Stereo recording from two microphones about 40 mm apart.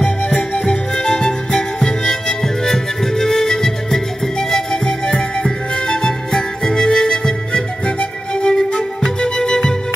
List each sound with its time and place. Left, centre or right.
0.4 s music: centre